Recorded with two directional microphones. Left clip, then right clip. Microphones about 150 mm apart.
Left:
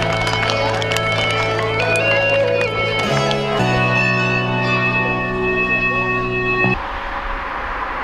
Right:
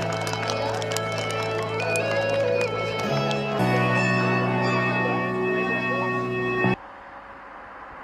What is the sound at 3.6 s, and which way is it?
Music, 40° right (ahead or behind).